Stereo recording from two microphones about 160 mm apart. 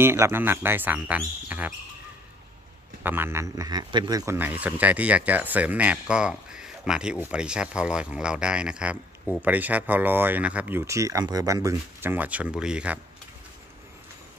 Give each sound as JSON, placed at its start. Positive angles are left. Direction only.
{"t": 0.0, "sound": "speech", "side_deg": -15}
{"t": 3.0, "sound": "speech", "side_deg": -15}
{"t": 4.4, "sound": "speech", "side_deg": -10}